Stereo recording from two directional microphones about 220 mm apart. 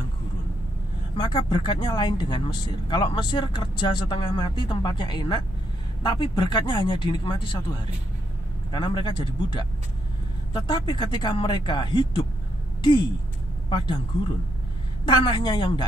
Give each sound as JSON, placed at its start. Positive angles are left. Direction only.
{"t": 1.1, "sound": "speech", "side_deg": 20}
{"t": 13.7, "sound": "speech", "side_deg": 20}